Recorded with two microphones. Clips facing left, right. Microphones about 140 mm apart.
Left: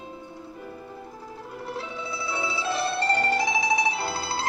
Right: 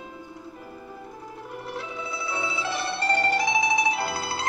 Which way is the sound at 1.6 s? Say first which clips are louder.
Left 1 dB; 25° left (ahead or behind).